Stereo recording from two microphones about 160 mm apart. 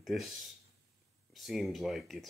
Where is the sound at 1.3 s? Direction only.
Centre (ahead or behind).